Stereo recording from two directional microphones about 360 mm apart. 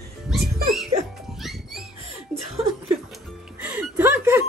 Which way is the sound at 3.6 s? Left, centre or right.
Centre.